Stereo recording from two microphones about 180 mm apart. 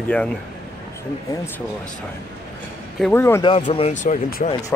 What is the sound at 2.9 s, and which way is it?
Speech, 10° left (ahead or behind).